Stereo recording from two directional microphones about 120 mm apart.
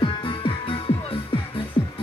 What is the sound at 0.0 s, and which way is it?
Music, 45° left (ahead or behind).